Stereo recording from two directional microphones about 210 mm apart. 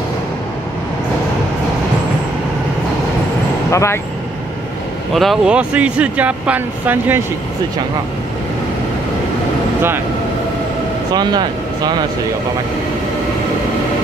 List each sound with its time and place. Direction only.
3.7 s speech: 15° left (ahead or behind)
5.1 s speech: centre (ahead or behind)
11.1 s speech: 20° right (ahead or behind)